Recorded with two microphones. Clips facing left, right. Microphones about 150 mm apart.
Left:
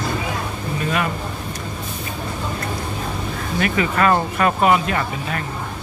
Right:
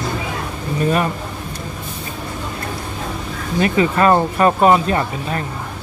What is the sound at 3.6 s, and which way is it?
Speech, 30° right (ahead or behind).